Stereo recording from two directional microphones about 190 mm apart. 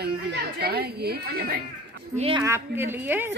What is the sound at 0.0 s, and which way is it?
Speech, 55° right (ahead or behind).